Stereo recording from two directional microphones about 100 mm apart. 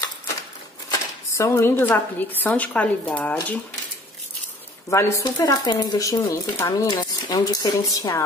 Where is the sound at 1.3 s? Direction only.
25° left (ahead or behind).